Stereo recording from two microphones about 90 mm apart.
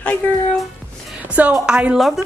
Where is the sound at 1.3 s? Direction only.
15° right (ahead or behind).